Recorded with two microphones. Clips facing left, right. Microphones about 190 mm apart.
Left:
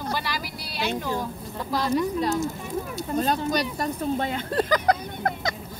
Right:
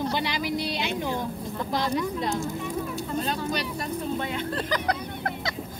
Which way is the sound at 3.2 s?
40° left (ahead or behind).